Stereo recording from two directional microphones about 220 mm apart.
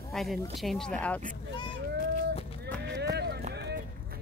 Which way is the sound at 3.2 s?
45° right (ahead or behind).